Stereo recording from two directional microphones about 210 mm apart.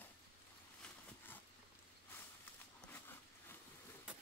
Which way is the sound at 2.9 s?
10° left (ahead or behind).